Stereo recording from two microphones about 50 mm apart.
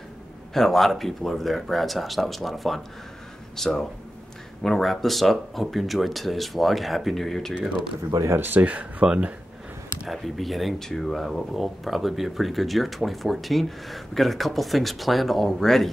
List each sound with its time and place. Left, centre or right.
0.5 s speech: centre
8.4 s speech: right
9.0 s speech: centre
10.0 s speech: centre